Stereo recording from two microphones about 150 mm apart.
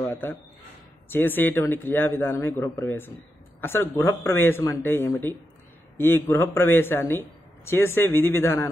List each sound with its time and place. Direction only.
0.0 s speech: 15° left (ahead or behind)